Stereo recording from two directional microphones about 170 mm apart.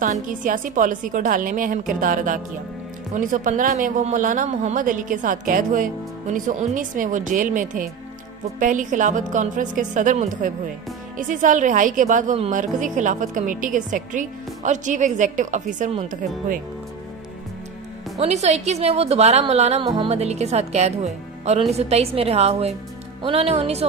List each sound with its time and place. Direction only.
0.0 s a woman's voice: 50° right (ahead or behind)
18.1 s a woman's voice: 40° right (ahead or behind)